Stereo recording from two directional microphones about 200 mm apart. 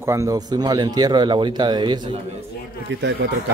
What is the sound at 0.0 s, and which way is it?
A man's voice, 15° right (ahead or behind).